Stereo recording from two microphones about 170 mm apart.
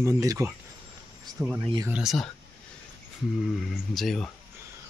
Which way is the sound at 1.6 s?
20° right (ahead or behind).